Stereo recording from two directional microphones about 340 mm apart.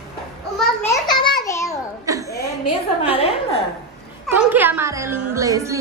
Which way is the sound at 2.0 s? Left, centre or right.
Centre.